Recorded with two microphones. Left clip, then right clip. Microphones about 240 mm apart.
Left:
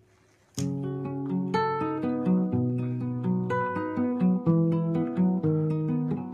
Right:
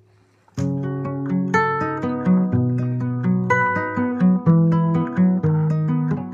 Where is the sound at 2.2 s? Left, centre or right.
Right.